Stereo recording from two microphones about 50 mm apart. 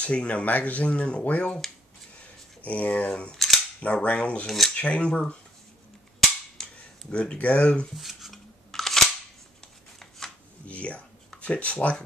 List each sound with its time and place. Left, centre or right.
0.0 s speech: left
2.6 s speech: left
3.3 s cap gun: centre
3.8 s speech: left
4.5 s speech: centre
4.7 s cutlery: left
6.6 s cap gun: centre
7.2 s speech: left
7.9 s scissors: centre
9.9 s shuffling cards: centre
10.7 s speech: left